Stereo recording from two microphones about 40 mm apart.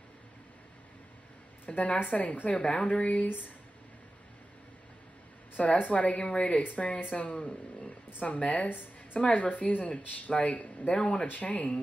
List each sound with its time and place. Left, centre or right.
1.7 s speech: centre
2.1 s speech: left
2.6 s speech: left
3.3 s a woman's voice: left
5.8 s speech: left
7.3 s speech: left
8.1 s speech: left
8.6 s a woman's voice: left
9.2 s a woman's voice: left
10.2 s speech: left
10.9 s speech: left
11.2 s speech: left